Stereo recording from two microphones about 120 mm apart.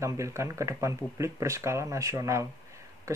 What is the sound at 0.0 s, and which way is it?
Speech, 25° right (ahead or behind).